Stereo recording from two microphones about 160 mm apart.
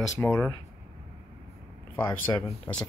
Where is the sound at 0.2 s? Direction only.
15° left (ahead or behind).